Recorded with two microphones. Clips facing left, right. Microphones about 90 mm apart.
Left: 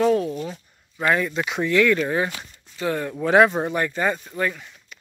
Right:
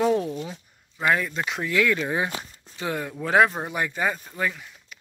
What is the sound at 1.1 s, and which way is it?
Speech, centre (ahead or behind).